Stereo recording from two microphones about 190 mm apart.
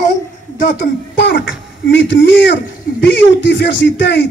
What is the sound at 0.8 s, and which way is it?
Speech, 65° left (ahead or behind).